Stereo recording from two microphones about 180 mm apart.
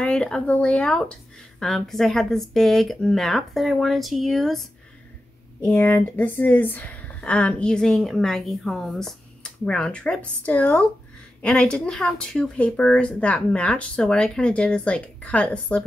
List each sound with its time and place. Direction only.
0.0 s a woman's voice: 5° left (ahead or behind)